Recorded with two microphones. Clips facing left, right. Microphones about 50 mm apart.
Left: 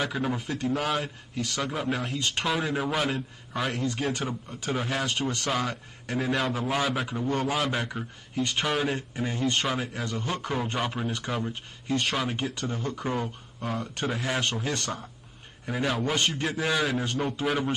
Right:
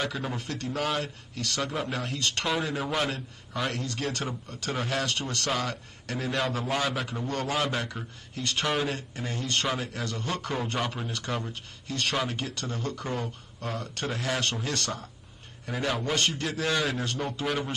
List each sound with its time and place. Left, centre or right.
0.1 s a man's voice: centre
2.1 s a man's voice: centre
2.4 s a man's voice: centre
4.5 s a man's voice: centre
8.6 s a man's voice: centre
11.5 s a man's voice: centre
16.7 s a man's voice: centre